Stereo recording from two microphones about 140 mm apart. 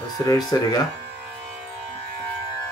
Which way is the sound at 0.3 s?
25° left (ahead or behind).